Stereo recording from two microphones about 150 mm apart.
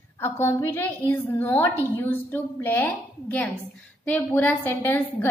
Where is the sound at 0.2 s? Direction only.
15° left (ahead or behind).